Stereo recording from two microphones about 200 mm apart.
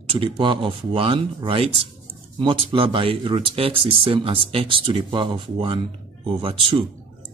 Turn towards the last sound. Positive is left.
turn(degrees=-25)  # may be behind; listen again after turning